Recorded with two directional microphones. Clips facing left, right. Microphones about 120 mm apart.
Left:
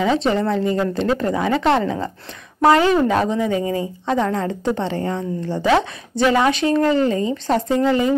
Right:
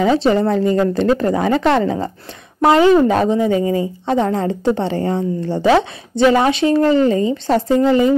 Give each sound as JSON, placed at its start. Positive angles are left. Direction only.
{"t": 0.0, "sound": "a woman's voice", "side_deg": -40}
{"t": 2.7, "sound": "a woman's voice", "side_deg": -25}